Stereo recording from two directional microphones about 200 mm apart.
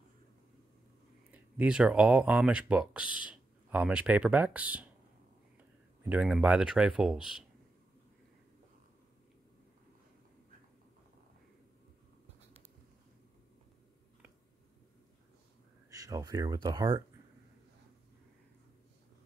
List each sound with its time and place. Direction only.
1.3 s speech: 5° right (ahead or behind)
6.0 s speech: 5° right (ahead or behind)
15.9 s speech: 15° right (ahead or behind)